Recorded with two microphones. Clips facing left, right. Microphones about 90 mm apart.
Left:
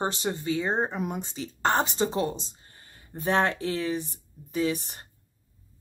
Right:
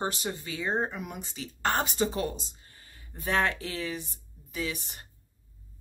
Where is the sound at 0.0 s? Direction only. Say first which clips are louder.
Left 4 dB; 30° left (ahead or behind).